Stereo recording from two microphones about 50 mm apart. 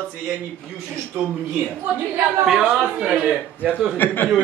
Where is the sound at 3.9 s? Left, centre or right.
Left.